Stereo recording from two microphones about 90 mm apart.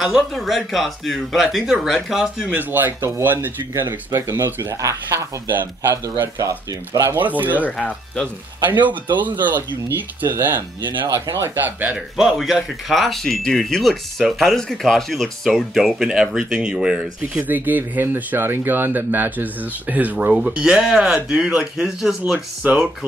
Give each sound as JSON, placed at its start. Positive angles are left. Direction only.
{"t": 0.0, "sound": "speech", "side_deg": -5}
{"t": 2.5, "sound": "speech", "side_deg": -20}
{"t": 7.2, "sound": "speech", "side_deg": -20}
{"t": 9.4, "sound": "speech", "side_deg": -25}
{"t": 12.2, "sound": "speech", "side_deg": -5}
{"t": 17.4, "sound": "speech", "side_deg": -20}